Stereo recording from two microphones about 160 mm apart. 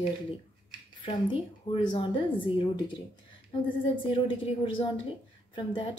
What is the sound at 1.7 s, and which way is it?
Speech, 30° left (ahead or behind).